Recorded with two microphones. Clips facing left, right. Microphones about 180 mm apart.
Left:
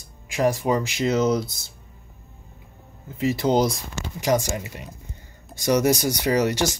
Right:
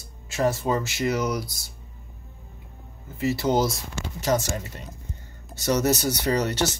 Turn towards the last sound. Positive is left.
turn(degrees=10)  # may be behind; listen again after turning